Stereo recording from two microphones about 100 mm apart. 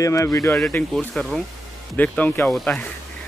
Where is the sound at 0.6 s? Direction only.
15° left (ahead or behind).